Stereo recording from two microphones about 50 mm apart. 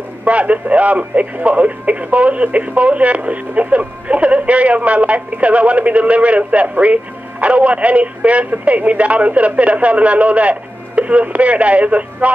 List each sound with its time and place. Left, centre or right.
0.2 s a man's voice: right